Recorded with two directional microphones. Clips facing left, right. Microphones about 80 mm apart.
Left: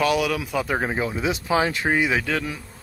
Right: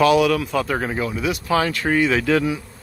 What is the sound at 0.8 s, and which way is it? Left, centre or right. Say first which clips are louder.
Speech: right 1 dB; left.